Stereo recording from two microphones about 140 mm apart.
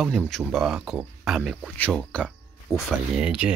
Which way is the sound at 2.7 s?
25° right (ahead or behind).